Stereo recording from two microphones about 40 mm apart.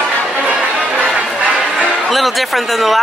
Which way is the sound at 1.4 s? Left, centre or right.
Centre.